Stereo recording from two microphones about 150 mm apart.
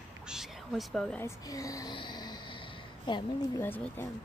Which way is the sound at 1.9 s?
30° left (ahead or behind).